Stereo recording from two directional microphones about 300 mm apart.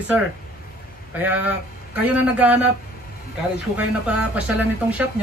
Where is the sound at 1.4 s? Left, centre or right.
Centre.